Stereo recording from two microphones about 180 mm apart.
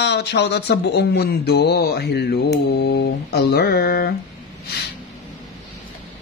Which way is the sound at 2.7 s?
70° left (ahead or behind).